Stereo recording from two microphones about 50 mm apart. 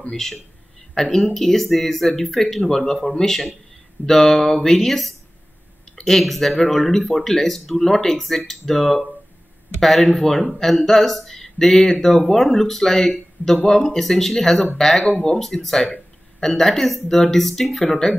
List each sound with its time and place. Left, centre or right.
0.1 s speech: centre